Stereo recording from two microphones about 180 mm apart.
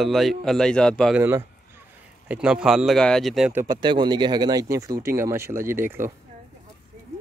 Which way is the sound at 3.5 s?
15° right (ahead or behind).